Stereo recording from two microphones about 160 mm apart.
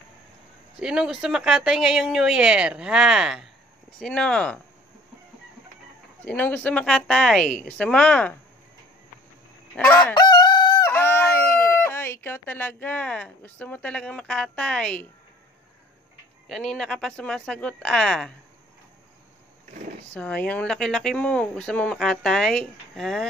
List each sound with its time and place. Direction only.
0.7 s a woman's voice: 5° right (ahead or behind)
6.2 s a woman's voice: 10° left (ahead or behind)
9.8 s a woman's voice: 10° left (ahead or behind)
10.1 s crowing: 25° left (ahead or behind)
10.9 s speech: 15° left (ahead or behind)
16.4 s speech: 5° left (ahead or behind)
20.2 s speech: 10° left (ahead or behind)